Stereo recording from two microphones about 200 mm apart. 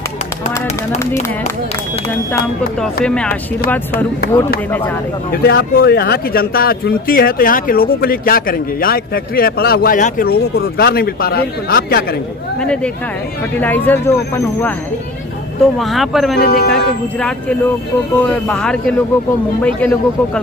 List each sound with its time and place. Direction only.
2.8 s speech: 5° left (ahead or behind)
5.3 s speech: 50° left (ahead or behind)
13.6 s speech: 10° left (ahead or behind)
15.8 s speech: centre (ahead or behind)
16.3 s speech: 50° left (ahead or behind)
18.1 s speech: 5° left (ahead or behind)